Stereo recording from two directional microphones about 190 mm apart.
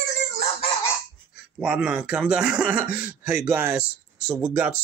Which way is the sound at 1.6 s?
5° right (ahead or behind).